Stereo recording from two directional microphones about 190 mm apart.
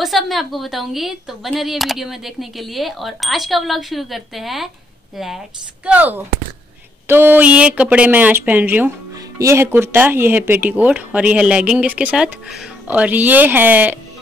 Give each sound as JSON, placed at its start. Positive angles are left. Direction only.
{"t": 0.0, "sound": "a woman's voice", "side_deg": 0}